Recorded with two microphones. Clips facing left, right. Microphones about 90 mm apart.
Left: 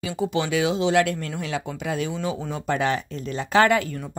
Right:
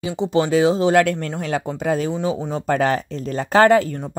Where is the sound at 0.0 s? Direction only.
25° right (ahead or behind).